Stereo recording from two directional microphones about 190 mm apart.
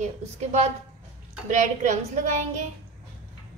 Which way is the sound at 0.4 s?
35° right (ahead or behind).